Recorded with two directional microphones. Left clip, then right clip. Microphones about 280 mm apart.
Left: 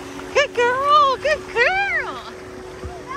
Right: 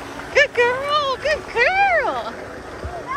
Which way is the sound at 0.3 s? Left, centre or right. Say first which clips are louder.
Right 2 dB; centre.